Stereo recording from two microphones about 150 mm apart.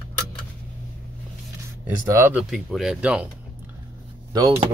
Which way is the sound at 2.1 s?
15° right (ahead or behind).